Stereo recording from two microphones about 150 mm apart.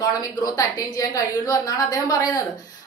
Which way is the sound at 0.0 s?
25° left (ahead or behind).